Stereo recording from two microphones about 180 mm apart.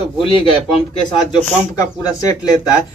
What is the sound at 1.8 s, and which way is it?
Speech, 20° left (ahead or behind).